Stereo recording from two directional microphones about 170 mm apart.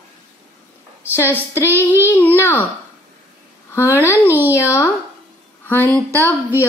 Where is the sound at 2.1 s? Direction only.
10° left (ahead or behind).